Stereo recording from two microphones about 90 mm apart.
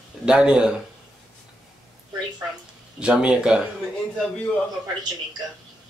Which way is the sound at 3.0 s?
10° right (ahead or behind).